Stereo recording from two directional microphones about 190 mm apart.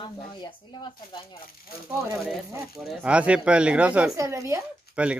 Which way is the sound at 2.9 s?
5° right (ahead or behind).